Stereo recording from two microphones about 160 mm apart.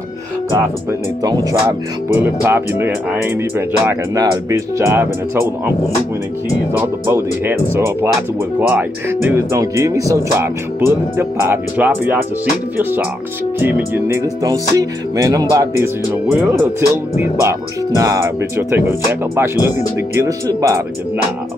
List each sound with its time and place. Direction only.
1.2 s music: 25° right (ahead or behind)
6.8 s music: 15° right (ahead or behind)
13.6 s music: 10° right (ahead or behind)
20.2 s speech: 20° right (ahead or behind)